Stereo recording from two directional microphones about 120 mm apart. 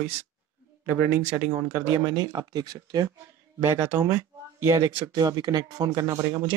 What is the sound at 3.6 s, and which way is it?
Speech, 20° right (ahead or behind).